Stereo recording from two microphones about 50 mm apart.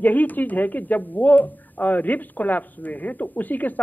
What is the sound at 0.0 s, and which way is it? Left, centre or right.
Speech, left.